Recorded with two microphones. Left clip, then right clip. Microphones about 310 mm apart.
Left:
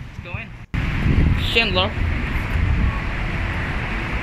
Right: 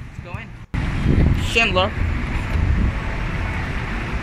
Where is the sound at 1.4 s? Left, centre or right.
Centre.